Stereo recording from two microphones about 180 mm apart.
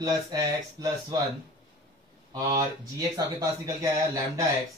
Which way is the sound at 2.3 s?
20° right (ahead or behind).